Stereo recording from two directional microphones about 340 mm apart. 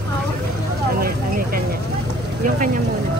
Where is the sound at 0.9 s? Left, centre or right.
Right.